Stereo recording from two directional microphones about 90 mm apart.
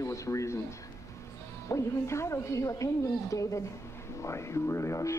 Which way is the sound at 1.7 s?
30° left (ahead or behind).